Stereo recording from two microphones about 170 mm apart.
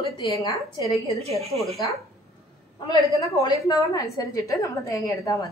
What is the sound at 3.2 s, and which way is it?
A woman's voice, 20° left (ahead or behind).